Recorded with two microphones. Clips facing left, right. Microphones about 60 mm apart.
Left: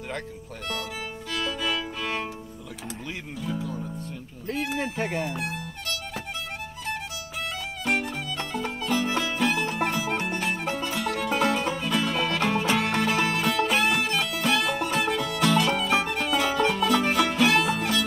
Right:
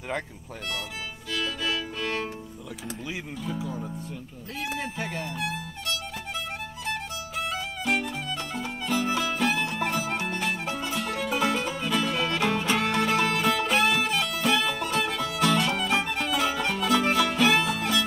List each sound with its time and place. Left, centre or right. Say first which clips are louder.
1.4 s music: left 1 dB; centre
3.1 s speech: left 1 dB; centre
4.9 s speech: left 4 dB; left
5.2 s speech: left 1 dB; centre
7.8 s music: left 1 dB; centre